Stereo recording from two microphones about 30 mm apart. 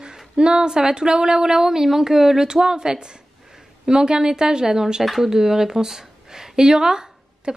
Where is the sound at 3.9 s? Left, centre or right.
Right.